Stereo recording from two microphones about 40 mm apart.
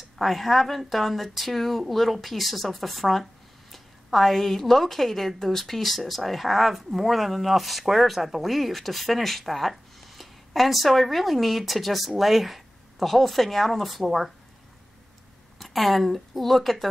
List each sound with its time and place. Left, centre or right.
0.2 s a woman's voice: centre
15.6 s a woman's voice: centre